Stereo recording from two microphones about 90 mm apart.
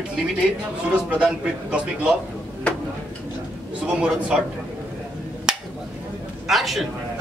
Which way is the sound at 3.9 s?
15° right (ahead or behind).